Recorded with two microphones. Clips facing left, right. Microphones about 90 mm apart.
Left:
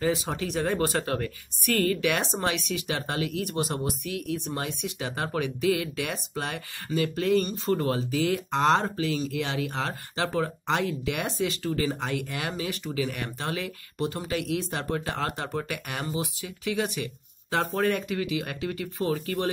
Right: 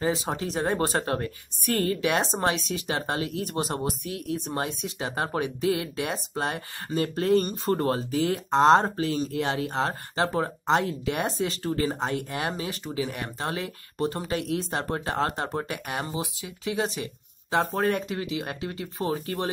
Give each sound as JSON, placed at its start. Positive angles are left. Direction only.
{"t": 0.0, "sound": "a woman's voice", "side_deg": -30}